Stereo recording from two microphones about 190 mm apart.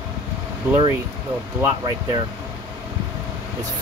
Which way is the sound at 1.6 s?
20° right (ahead or behind).